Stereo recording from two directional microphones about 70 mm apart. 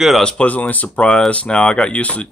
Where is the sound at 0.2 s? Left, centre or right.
Centre.